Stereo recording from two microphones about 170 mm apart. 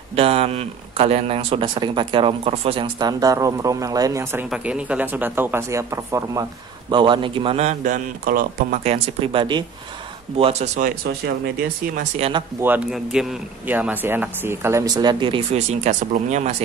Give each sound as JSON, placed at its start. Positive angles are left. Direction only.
{"t": 0.1, "sound": "speech", "side_deg": -35}
{"t": 6.9, "sound": "a man's voice", "side_deg": -30}
{"t": 8.8, "sound": "a man's voice", "side_deg": -35}
{"t": 12.2, "sound": "speech", "side_deg": -30}
{"t": 12.6, "sound": "speech", "side_deg": -5}
{"t": 15.5, "sound": "a man's voice", "side_deg": -40}